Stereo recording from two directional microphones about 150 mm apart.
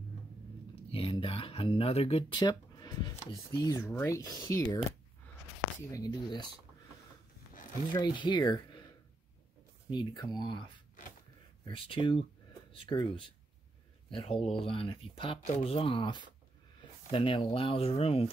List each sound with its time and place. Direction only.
0.8 s speech: 40° left (ahead or behind)
2.3 s a sound: 30° left (ahead or behind)
3.5 s speech: 25° left (ahead or behind)
5.9 s speech: 20° left (ahead or behind)
7.9 s speech: 30° left (ahead or behind)
9.8 s speech: 30° left (ahead or behind)